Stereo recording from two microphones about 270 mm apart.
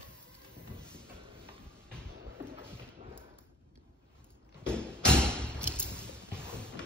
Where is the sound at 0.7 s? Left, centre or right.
Centre.